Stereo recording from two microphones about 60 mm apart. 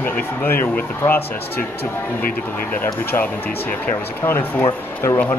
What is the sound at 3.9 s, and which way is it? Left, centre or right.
Speech, left.